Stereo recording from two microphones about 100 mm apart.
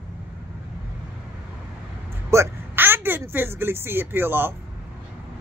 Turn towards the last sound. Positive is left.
turn(degrees=-20)  # may be behind; listen again after turning